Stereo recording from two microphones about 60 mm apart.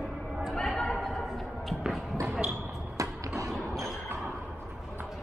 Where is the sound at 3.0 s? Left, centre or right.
Right.